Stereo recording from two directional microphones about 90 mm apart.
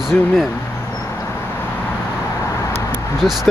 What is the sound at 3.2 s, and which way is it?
Speech, centre (ahead or behind).